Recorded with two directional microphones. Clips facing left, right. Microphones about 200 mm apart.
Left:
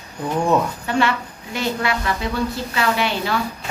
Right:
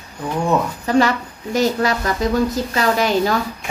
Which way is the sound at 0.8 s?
40° right (ahead or behind).